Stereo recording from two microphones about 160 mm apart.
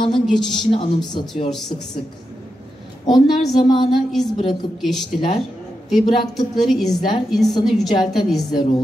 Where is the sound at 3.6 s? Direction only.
35° left (ahead or behind).